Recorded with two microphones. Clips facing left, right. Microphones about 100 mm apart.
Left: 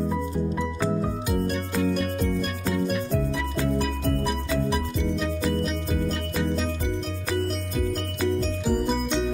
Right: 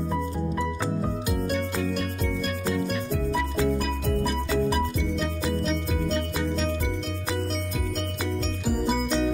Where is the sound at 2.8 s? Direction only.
Centre (ahead or behind).